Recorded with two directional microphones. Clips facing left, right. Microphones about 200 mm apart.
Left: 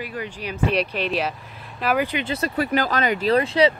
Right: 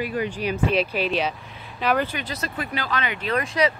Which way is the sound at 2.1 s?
25° left (ahead or behind).